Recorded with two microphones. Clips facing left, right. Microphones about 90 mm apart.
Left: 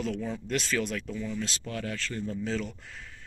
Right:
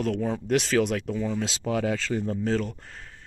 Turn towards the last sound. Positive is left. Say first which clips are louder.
# right 2 dB
turn(degrees=-40)  # may be behind; listen again after turning